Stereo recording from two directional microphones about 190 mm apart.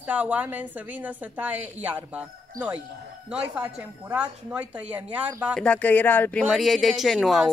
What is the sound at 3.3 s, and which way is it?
Speech, 5° right (ahead or behind).